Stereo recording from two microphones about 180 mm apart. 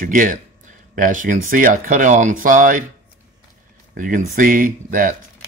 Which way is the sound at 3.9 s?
50° right (ahead or behind).